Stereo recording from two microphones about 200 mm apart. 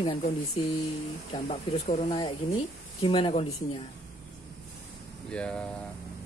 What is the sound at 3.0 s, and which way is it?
Speech, 25° left (ahead or behind).